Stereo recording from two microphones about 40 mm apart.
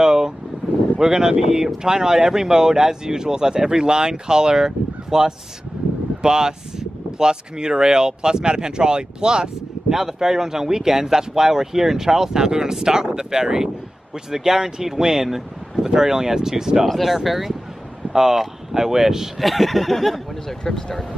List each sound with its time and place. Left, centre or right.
0.0 s vehicle: centre
0.9 s speech: centre
16.8 s speech: centre
19.4 s speech: centre